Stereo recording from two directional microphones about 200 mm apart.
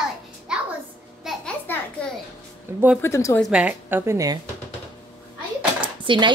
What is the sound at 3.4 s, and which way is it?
Speech, 5° right (ahead or behind).